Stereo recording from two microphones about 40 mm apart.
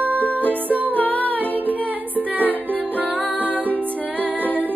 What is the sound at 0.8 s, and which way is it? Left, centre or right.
Music, left.